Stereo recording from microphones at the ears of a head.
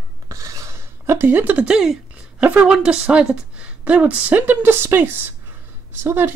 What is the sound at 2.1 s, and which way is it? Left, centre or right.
A woman's voice, right.